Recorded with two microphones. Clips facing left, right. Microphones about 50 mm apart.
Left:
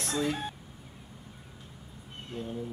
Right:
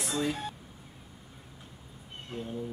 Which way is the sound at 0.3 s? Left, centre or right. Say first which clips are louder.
Left 1 dB; left.